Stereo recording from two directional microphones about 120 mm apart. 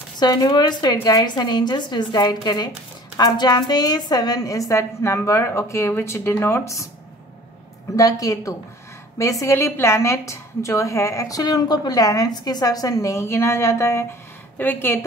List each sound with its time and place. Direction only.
0.2 s a woman's voice: 35° left (ahead or behind)
7.9 s a woman's voice: 30° left (ahead or behind)